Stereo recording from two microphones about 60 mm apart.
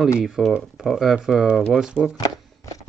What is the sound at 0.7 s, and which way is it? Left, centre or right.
Speech, centre.